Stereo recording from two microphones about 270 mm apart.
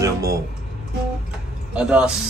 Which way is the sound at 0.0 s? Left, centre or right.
Centre.